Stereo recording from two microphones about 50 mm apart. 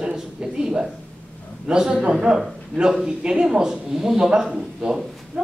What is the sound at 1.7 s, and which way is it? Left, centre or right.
Speech, centre.